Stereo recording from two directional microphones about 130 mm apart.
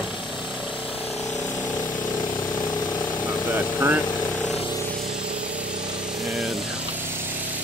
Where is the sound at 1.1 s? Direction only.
15° left (ahead or behind).